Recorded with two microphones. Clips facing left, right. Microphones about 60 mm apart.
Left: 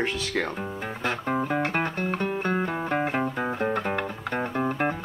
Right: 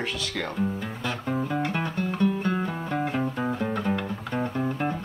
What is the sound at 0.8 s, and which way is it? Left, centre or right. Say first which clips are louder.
Music: left 2 dB; left.